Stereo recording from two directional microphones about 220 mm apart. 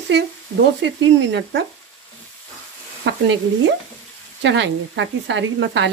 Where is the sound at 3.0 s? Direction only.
55° right (ahead or behind).